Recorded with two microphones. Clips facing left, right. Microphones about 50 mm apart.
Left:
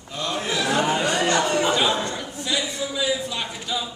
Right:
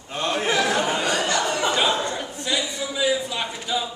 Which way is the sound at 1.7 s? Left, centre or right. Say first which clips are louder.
Even; centre.